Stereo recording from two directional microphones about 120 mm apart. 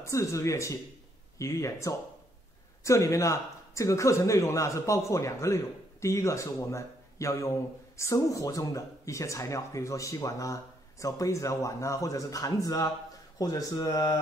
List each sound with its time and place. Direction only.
0.0 s a man's voice: 25° left (ahead or behind)